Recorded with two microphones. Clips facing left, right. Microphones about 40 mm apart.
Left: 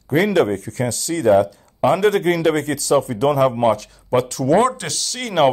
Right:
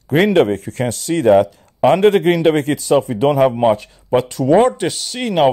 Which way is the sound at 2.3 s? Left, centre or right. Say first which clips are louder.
Right 4 dB; right.